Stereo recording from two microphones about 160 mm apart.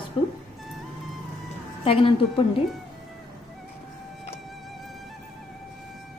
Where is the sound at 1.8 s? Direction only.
35° left (ahead or behind).